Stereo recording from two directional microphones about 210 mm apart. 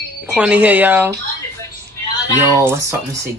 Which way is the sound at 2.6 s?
10° right (ahead or behind).